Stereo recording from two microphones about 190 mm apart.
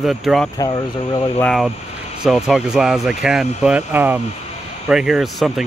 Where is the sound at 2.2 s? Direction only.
Centre (ahead or behind).